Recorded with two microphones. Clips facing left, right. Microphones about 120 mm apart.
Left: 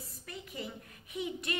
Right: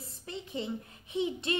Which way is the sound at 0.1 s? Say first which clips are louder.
Right 8 dB; 25° right (ahead or behind).